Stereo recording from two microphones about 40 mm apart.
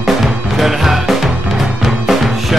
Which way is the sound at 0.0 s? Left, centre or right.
Centre.